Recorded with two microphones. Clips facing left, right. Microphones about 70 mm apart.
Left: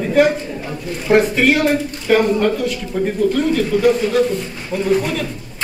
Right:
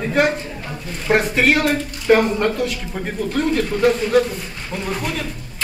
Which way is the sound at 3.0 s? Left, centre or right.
Centre.